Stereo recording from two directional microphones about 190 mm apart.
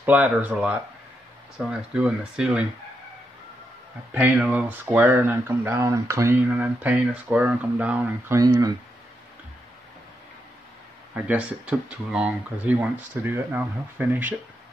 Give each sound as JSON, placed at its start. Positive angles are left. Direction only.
{"t": 0.0, "sound": "speech", "side_deg": -10}
{"t": 4.1, "sound": "speech", "side_deg": -5}
{"t": 8.4, "sound": "speech", "side_deg": -20}
{"t": 11.1, "sound": "speech", "side_deg": -5}